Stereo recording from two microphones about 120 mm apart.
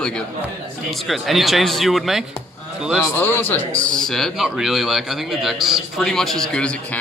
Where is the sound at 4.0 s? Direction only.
Centre (ahead or behind).